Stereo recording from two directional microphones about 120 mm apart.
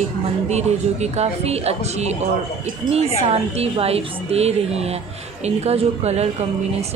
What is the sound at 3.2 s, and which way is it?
A woman's voice, 60° right (ahead or behind).